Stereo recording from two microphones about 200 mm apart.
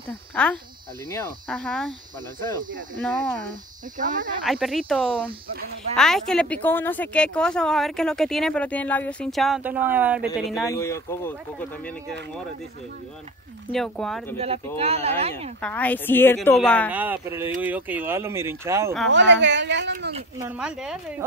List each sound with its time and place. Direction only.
0.3 s a woman's voice: 5° left (ahead or behind)
3.0 s a woman's voice: centre (ahead or behind)
4.0 s speech: 40° right (ahead or behind)
4.5 s a woman's voice: centre (ahead or behind)
10.6 s a woman's voice: 15° left (ahead or behind)
13.7 s a woman's voice: 5° left (ahead or behind)
14.8 s speech: 30° right (ahead or behind)
15.6 s a woman's voice: 10° left (ahead or behind)
16.9 s speech: 10° right (ahead or behind)
19.0 s a woman's voice: 65° right (ahead or behind)
20.4 s a woman's voice: 5° right (ahead or behind)